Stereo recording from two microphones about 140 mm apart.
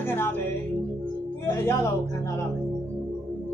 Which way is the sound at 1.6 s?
15° left (ahead or behind).